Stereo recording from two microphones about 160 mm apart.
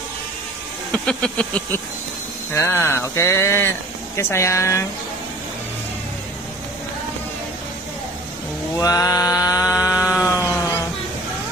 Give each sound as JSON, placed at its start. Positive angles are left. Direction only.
{"t": 0.9, "sound": "speech", "side_deg": 5}
{"t": 8.7, "sound": "mantra", "side_deg": 20}
{"t": 10.2, "sound": "a sound", "side_deg": 20}